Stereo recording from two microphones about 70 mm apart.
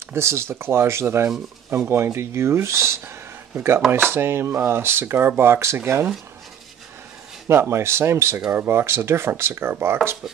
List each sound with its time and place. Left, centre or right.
0.1 s speech: right
7.4 s speech: right